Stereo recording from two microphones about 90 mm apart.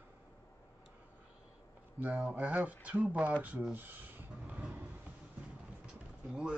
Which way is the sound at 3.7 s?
20° right (ahead or behind).